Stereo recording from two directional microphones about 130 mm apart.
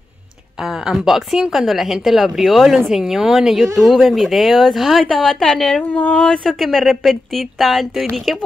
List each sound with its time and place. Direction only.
0.6 s a woman's voice: 5° right (ahead or behind)